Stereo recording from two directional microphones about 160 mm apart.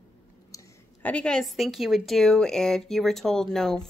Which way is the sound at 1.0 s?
5° left (ahead or behind).